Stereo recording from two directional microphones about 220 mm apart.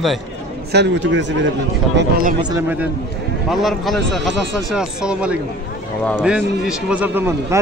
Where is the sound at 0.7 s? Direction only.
50° right (ahead or behind).